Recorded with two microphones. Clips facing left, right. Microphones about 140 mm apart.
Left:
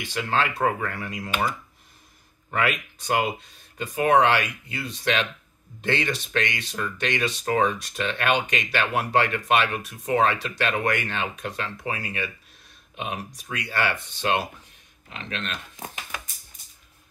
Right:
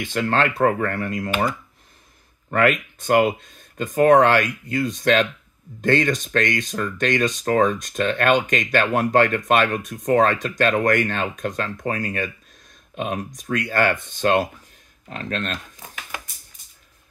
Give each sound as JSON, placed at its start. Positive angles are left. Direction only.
{"t": 0.0, "sound": "speech", "side_deg": -55}
{"t": 2.5, "sound": "speech", "side_deg": -50}